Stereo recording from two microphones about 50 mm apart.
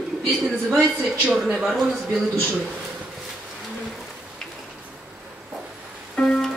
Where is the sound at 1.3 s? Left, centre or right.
Centre.